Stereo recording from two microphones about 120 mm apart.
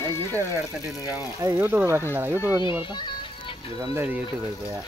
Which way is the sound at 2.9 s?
40° left (ahead or behind).